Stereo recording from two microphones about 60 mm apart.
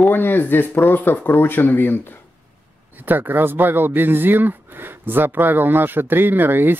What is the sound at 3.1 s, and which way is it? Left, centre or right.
Speech, right.